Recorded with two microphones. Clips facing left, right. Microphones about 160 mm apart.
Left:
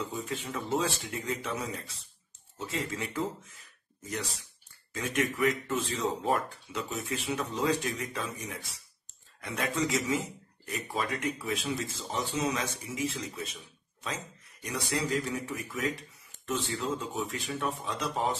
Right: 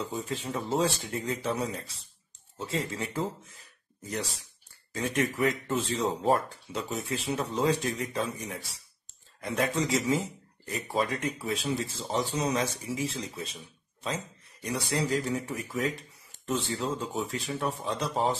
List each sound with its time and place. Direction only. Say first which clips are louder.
0.0 s speech: right 2 dB; 35° right (ahead or behind)
14.6 s speech: right 2 dB; 35° right (ahead or behind)